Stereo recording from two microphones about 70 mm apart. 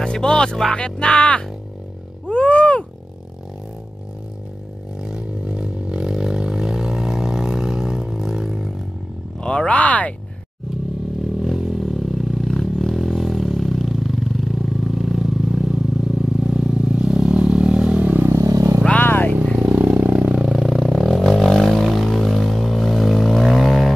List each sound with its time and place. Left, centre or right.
0.0 s speech: centre
2.2 s a sound: centre
5.0 s a sound: centre
9.4 s speech: centre
11.3 s a sound: centre
16.5 s vehicle: centre
18.3 s vehicle: right
18.9 s vehicle: left
19.5 s vehicle: right
20.4 s vehicle: centre